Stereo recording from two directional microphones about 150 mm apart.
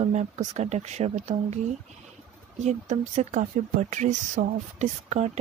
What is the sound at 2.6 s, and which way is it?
Speech, 50° right (ahead or behind).